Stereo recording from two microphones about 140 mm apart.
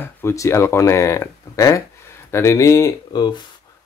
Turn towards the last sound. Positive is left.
turn(degrees=30)  # may be behind; listen again after turning